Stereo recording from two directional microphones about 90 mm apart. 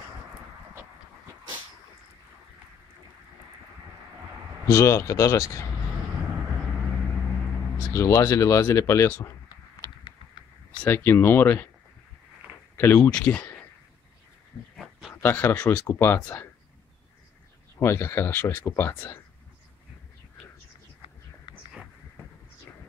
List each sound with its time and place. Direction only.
4.6 s speech: 35° left (ahead or behind)
7.9 s speech: 35° left (ahead or behind)
10.0 s a sound: 60° left (ahead or behind)
10.9 s speech: 25° left (ahead or behind)
12.7 s speech: 25° left (ahead or behind)
13.1 s speech: 15° left (ahead or behind)
14.8 s dog: centre (ahead or behind)
15.2 s speech: 25° left (ahead or behind)
17.7 s speech: 30° left (ahead or behind)